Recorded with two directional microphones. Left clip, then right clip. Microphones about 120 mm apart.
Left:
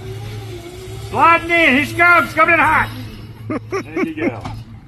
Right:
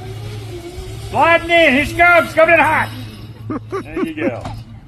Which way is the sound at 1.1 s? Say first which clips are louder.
Right 1 dB; 40° right (ahead or behind).